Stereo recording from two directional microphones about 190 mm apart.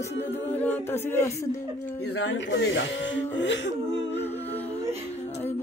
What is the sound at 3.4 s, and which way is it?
Speech, 70° left (ahead or behind).